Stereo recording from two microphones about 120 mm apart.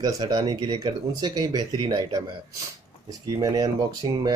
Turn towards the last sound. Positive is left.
turn(degrees=-30)  # may be behind; listen again after turning